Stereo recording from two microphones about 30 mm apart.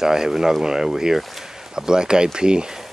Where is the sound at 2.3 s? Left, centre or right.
Right.